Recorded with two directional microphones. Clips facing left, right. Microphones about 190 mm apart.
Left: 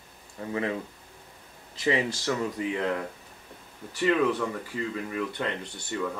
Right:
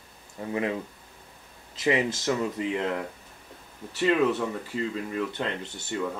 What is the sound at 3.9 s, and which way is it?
Speech, 25° right (ahead or behind).